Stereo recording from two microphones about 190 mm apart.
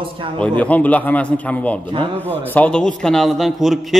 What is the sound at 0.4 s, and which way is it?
A man's voice, 5° left (ahead or behind).